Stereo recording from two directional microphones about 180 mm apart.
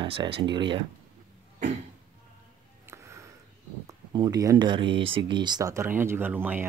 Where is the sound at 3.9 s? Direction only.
20° right (ahead or behind).